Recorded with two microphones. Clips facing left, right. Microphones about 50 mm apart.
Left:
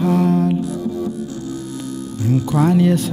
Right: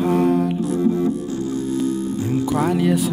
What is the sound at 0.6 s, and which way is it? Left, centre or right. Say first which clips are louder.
Music: right 4 dB; right.